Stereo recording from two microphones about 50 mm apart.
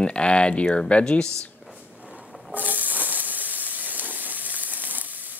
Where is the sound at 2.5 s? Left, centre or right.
Right.